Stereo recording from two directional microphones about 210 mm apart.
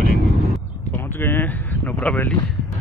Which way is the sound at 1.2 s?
10° left (ahead or behind).